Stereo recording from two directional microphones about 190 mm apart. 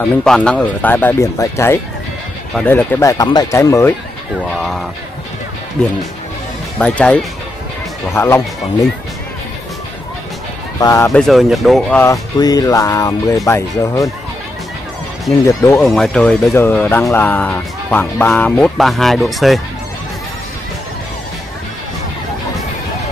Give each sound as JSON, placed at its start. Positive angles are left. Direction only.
{"t": 0.2, "sound": "speech", "side_deg": 5}
{"t": 4.5, "sound": "speech", "side_deg": 0}
{"t": 6.8, "sound": "speech", "side_deg": 5}
{"t": 10.8, "sound": "speech", "side_deg": 15}
{"t": 11.1, "sound": "speech", "side_deg": 0}
{"t": 12.0, "sound": "speech", "side_deg": 20}
{"t": 15.4, "sound": "speech", "side_deg": 15}
{"t": 15.8, "sound": "speech", "side_deg": 0}